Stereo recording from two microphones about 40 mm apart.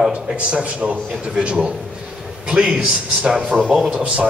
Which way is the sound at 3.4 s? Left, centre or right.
Right.